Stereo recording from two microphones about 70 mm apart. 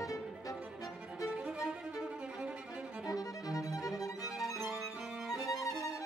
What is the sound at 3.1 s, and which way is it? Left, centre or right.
Violin, left.